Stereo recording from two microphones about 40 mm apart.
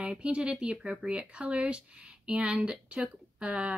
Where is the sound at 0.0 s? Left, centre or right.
Right.